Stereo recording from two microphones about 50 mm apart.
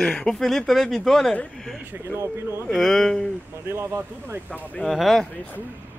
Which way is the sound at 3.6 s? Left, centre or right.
Right.